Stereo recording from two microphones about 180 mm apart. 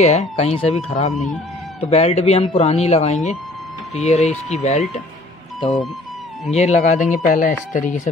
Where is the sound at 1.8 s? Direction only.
35° left (ahead or behind).